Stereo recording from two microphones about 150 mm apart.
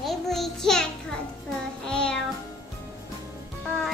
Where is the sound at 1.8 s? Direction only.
5° left (ahead or behind).